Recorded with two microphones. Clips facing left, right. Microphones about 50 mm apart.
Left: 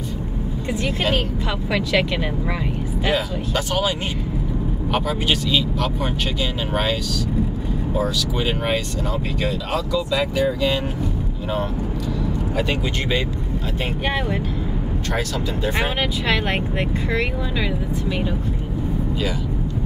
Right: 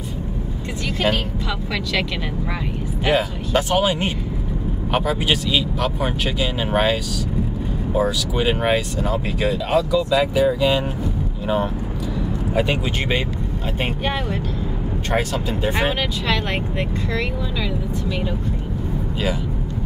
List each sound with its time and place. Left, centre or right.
1.7 s speech: centre
3.1 s speech: right
4.9 s speech: centre
12.5 s speech: centre
15.1 s speech: right
16.0 s speech: centre